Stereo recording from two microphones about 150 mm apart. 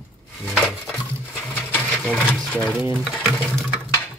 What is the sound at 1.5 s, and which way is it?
Sewing machine, 10° left (ahead or behind).